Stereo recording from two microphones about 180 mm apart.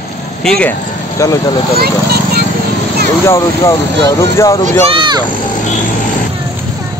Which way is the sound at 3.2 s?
15° left (ahead or behind).